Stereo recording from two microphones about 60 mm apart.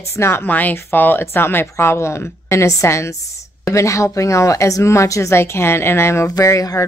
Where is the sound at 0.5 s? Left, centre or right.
Left.